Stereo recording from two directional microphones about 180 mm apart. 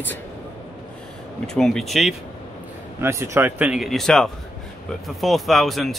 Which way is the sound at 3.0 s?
15° right (ahead or behind).